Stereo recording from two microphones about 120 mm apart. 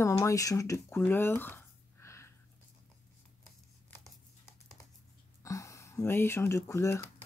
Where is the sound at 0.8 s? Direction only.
15° left (ahead or behind).